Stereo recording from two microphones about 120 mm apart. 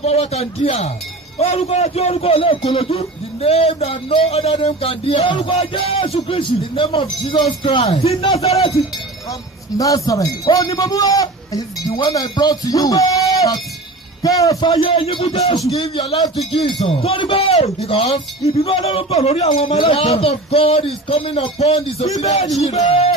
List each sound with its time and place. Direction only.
0.0 s a man's voice: 65° left (ahead or behind); by 7.9 s 50° left (ahead or behind)
7.9 s a man's voice: 60° left (ahead or behind)
8.5 s a man's voice: 30° left (ahead or behind)
14.2 s a man's voice: 30° left (ahead or behind)
14.7 s speech: 55° left (ahead or behind)
15.7 s speech: 35° left (ahead or behind)
16.8 s a man's voice: 55° left (ahead or behind); by 19.8 s 70° left (ahead or behind)
19.8 s a man's voice: 50° left (ahead or behind); by 22.8 s 70° left (ahead or behind)
22.8 s a man's voice: 60° left (ahead or behind)